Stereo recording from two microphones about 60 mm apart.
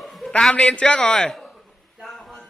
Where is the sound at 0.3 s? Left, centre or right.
Centre.